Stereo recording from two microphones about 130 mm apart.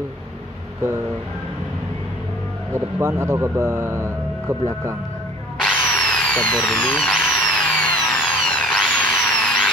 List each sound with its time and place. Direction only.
2.7 s speech: 20° right (ahead or behind)
5.6 s drill: 15° left (ahead or behind)
5.9 s speech: 5° left (ahead or behind)
7.4 s tools: 10° left (ahead or behind)